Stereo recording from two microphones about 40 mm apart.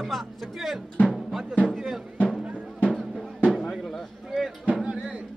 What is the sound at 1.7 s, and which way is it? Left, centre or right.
Music, centre.